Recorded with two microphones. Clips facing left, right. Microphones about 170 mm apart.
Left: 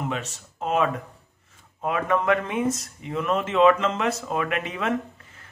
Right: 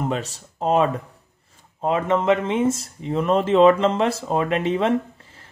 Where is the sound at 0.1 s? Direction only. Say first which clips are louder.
Right 5 dB; 35° right (ahead or behind).